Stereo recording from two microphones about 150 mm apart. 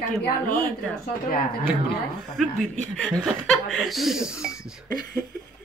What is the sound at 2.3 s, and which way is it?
Speech, 5° left (ahead or behind).